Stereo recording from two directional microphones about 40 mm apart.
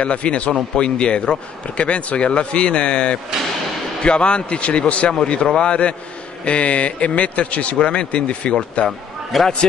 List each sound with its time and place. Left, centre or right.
0.0 s a man's voice: left
7.8 s a man's voice: left
9.3 s speech: centre